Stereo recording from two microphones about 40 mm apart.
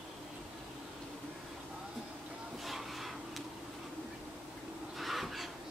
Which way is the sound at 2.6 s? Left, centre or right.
Centre.